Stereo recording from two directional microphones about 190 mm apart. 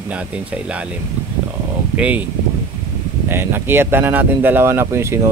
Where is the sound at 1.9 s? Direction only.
5° right (ahead or behind).